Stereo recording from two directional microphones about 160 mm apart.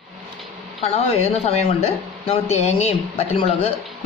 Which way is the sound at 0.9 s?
40° left (ahead or behind).